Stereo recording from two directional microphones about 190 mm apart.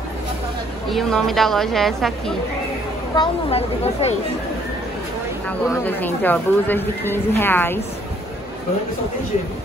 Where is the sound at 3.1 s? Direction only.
30° left (ahead or behind).